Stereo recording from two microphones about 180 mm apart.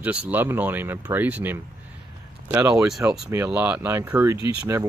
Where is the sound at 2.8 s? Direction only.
5° right (ahead or behind).